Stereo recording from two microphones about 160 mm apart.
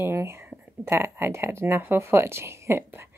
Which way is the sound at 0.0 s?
15° right (ahead or behind).